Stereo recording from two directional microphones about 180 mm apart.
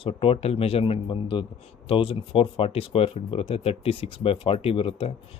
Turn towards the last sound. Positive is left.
turn(degrees=30)  # may be behind; listen again after turning